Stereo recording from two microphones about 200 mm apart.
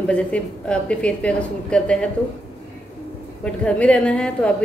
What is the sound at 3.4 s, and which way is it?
A woman's voice, 5° left (ahead or behind).